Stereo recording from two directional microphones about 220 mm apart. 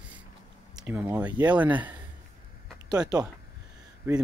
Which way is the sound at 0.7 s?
10° right (ahead or behind).